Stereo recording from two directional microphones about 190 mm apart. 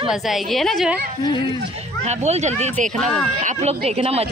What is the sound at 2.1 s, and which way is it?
Speech, 35° right (ahead or behind).